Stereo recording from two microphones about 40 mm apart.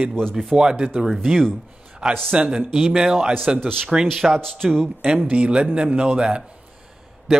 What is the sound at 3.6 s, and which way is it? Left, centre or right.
Speech, centre.